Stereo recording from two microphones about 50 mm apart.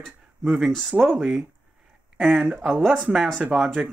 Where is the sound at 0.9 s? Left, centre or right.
Right.